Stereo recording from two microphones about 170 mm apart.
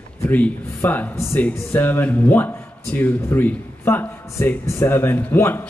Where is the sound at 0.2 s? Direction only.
10° left (ahead or behind).